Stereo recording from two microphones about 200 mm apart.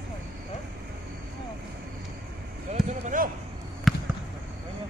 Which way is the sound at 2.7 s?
35° right (ahead or behind).